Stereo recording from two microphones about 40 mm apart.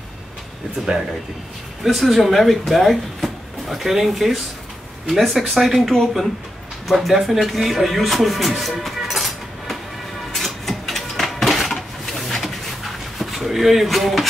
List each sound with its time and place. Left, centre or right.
1.8 s speech: centre
10.3 s printer: centre
11.3 s bird: centre